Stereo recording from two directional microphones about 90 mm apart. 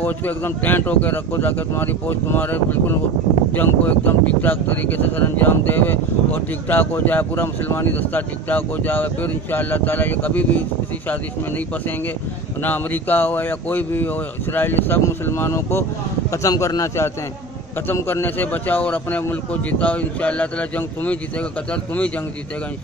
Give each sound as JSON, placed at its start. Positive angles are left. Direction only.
{"t": 0.0, "sound": "speech", "side_deg": 20}
{"t": 12.6, "sound": "a man's voice", "side_deg": 20}